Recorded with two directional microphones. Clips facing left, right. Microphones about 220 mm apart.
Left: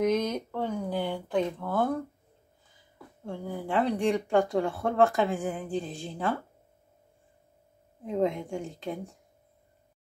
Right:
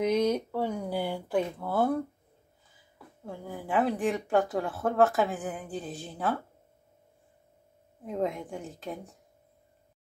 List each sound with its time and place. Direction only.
0.0 s a sound: 10° right (ahead or behind)
3.3 s speech: 5° right (ahead or behind)
8.0 s speech: centre (ahead or behind)